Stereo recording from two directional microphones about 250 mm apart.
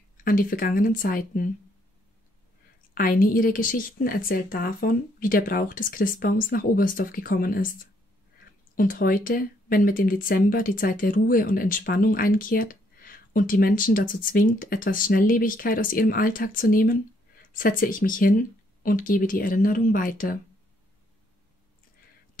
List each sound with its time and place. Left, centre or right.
0.2 s speech: left
2.9 s speech: left